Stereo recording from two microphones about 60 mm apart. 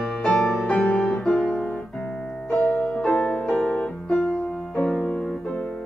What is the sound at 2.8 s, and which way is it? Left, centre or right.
Music, centre.